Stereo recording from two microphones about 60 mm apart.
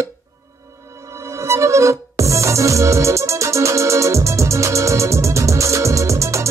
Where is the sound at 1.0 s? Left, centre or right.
Right.